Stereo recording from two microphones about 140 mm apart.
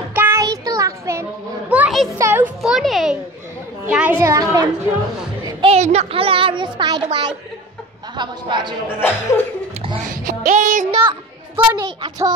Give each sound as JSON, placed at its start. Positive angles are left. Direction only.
{"t": 0.1, "sound": "child singing", "side_deg": -15}
{"t": 0.4, "sound": "a sound", "side_deg": -25}
{"t": 1.7, "sound": "a sound", "side_deg": -10}
{"t": 2.1, "sound": "a woman's voice", "side_deg": -20}
{"t": 2.6, "sound": "a child's voice", "side_deg": 0}
{"t": 4.2, "sound": "a woman's voice", "side_deg": -20}
{"t": 5.6, "sound": "a child's voice", "side_deg": -50}
{"t": 9.0, "sound": "speech", "side_deg": 15}
{"t": 10.0, "sound": "music", "side_deg": -75}
{"t": 11.0, "sound": "a child's voice", "side_deg": -35}